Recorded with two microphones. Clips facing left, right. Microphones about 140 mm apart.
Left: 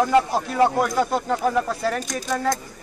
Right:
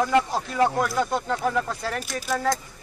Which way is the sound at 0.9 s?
10° left (ahead or behind).